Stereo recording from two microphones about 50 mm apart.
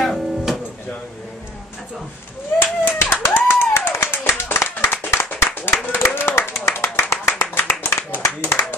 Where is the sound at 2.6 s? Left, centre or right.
Left.